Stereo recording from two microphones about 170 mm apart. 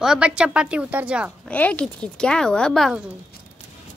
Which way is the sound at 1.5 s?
10° left (ahead or behind).